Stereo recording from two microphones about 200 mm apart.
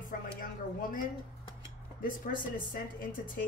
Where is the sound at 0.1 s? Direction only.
40° left (ahead or behind).